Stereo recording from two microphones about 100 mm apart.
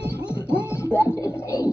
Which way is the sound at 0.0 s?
25° left (ahead or behind).